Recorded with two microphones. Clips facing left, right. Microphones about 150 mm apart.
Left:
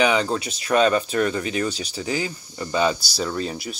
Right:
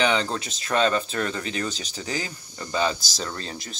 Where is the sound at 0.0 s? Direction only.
10° left (ahead or behind).